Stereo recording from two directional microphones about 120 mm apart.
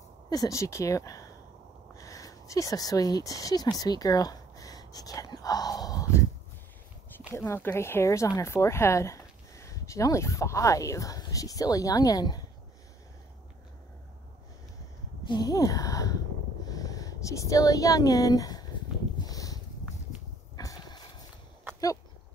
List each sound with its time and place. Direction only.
0.3 s speech: 30° left (ahead or behind)
7.3 s speech: 20° left (ahead or behind)
15.2 s speech: 35° left (ahead or behind)
19.1 s a sound: 30° left (ahead or behind)
20.5 s dog: 30° left (ahead or behind)